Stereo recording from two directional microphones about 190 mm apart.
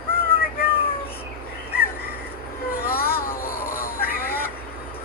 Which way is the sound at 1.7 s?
55° left (ahead or behind).